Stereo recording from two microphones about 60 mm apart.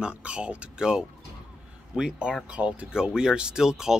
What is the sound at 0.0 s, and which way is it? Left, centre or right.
Speech, centre.